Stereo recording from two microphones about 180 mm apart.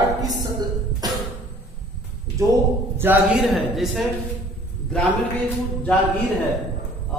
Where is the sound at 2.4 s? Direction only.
15° right (ahead or behind).